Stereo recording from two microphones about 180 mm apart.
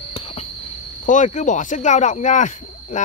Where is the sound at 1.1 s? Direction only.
45° left (ahead or behind).